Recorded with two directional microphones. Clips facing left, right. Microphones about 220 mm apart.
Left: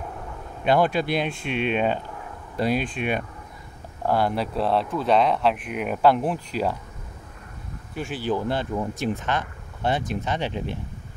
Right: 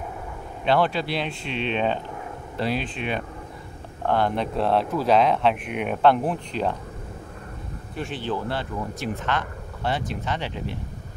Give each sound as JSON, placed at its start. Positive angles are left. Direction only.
{"t": 0.7, "sound": "speech", "side_deg": 15}
{"t": 7.9, "sound": "speech", "side_deg": 5}